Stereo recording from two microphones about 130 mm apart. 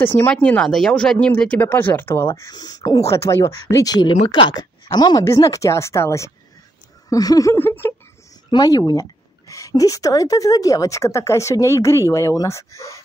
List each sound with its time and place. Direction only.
0.0 s speech: 15° left (ahead or behind)
2.5 s speech: 30° left (ahead or behind)
8.5 s speech: 30° left (ahead or behind)